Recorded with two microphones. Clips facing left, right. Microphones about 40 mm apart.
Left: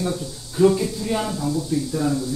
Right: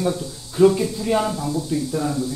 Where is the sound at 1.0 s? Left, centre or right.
Right.